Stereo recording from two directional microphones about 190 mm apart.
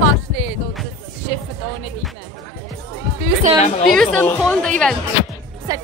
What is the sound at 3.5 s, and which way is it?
Speech, 35° left (ahead or behind).